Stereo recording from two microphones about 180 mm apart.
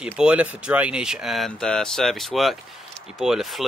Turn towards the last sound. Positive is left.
turn(degrees=0)  # may be behind; listen again after turning